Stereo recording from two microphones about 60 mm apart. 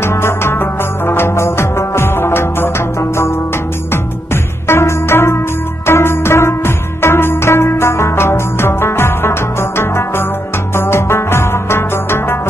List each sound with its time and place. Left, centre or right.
0.0 s music: left
4.6 s music: left